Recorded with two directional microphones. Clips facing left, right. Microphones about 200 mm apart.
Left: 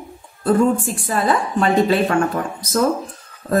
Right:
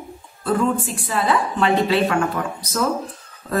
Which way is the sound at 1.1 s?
45° left (ahead or behind).